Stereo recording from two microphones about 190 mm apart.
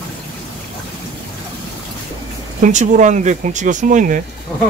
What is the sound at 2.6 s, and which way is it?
Speech, 40° right (ahead or behind).